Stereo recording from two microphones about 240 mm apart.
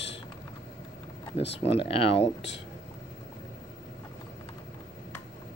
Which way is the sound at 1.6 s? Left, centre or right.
Left.